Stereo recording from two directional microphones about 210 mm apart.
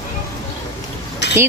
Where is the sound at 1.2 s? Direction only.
55° left (ahead or behind).